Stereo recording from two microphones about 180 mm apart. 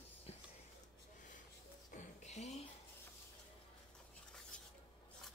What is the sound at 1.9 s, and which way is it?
Music, 40° left (ahead or behind).